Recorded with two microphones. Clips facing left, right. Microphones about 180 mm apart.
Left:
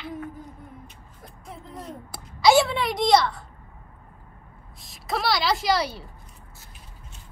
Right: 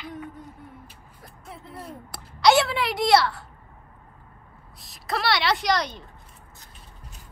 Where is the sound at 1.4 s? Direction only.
5° right (ahead or behind).